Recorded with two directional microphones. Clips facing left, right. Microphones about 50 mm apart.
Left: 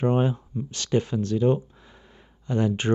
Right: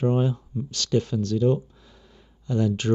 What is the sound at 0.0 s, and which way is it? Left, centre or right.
Speech, left.